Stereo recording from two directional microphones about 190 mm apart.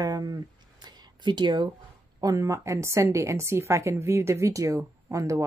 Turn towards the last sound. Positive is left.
turn(degrees=-15)  # may be behind; listen again after turning